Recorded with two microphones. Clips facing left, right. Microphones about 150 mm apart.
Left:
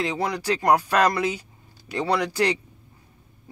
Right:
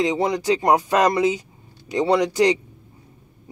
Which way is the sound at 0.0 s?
20° right (ahead or behind).